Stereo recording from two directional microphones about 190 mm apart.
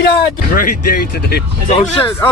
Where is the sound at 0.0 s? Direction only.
45° left (ahead or behind).